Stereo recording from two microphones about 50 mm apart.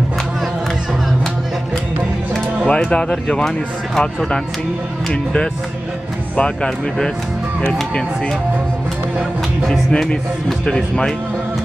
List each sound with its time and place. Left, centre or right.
2.6 s speech: left
6.3 s speech: centre
10.6 s speech: centre